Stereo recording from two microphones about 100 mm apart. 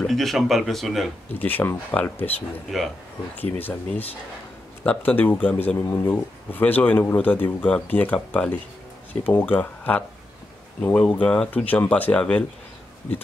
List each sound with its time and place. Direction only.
0.0 s speech: centre (ahead or behind)
1.3 s speech: 20° left (ahead or behind)